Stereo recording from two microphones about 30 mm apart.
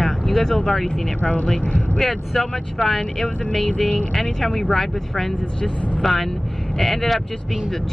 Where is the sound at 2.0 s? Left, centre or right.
Centre.